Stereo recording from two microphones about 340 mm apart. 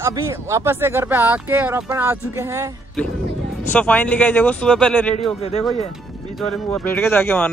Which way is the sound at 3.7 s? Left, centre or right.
Centre.